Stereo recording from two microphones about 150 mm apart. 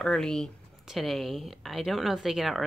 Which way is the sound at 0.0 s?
5° left (ahead or behind).